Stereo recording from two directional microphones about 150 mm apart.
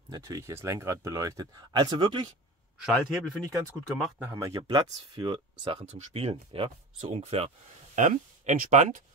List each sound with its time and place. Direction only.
0.1 s speech: 25° right (ahead or behind)
2.8 s a man's voice: 5° left (ahead or behind)
4.2 s speech: 15° right (ahead or behind)
4.6 s speech: 30° right (ahead or behind)
5.9 s speech: 40° right (ahead or behind)